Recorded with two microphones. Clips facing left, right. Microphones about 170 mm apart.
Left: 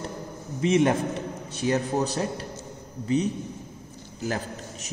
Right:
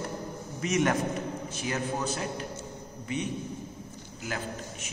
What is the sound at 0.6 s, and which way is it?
A man's voice, 30° left (ahead or behind).